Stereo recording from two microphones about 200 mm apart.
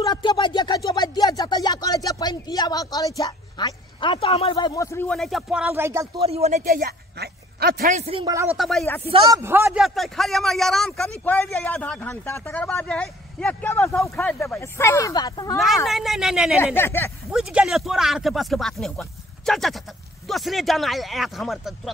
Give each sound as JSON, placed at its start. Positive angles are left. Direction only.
{"t": 0.0, "sound": "a sound", "side_deg": 20}
{"t": 6.1, "sound": "speech", "side_deg": -30}
{"t": 6.6, "sound": "a man's voice", "side_deg": -50}
{"t": 8.5, "sound": "speech", "side_deg": 0}
{"t": 8.8, "sound": "speech", "side_deg": 10}
{"t": 9.1, "sound": "speech", "side_deg": -15}
{"t": 9.7, "sound": "speech", "side_deg": 0}
{"t": 15.5, "sound": "speech", "side_deg": 0}
{"t": 16.5, "sound": "speech", "side_deg": 10}
{"t": 17.3, "sound": "speech", "side_deg": -5}